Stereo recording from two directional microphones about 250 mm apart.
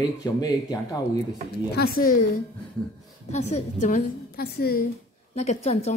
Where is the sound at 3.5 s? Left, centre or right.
Left.